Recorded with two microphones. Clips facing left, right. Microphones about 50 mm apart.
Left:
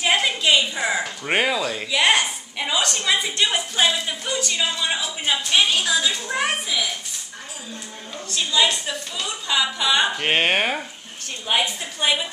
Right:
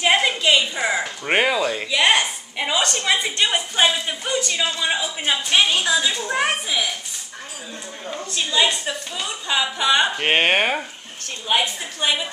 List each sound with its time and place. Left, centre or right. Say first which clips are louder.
0.0 s a woman's voice: right 2 dB; centre
8.3 s a woman's voice: even; centre
12.0 s a woman's voice: even; centre